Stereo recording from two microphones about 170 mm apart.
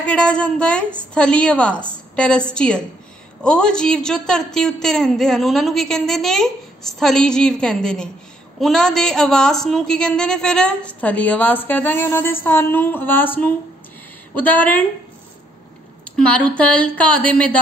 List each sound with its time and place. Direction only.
0.0 s a woman's voice: 5° left (ahead or behind)
16.2 s a woman's voice: 5° left (ahead or behind)